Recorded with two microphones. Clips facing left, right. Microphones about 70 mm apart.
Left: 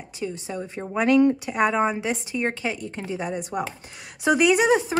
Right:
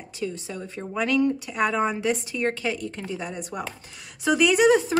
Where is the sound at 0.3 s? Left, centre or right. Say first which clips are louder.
Left 3 dB; centre.